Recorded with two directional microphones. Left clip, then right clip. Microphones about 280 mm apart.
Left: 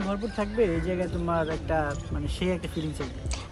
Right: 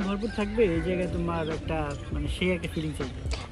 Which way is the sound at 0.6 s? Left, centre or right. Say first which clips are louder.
Right 1 dB; left.